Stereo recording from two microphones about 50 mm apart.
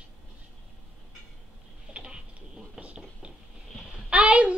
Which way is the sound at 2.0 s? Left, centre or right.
Centre.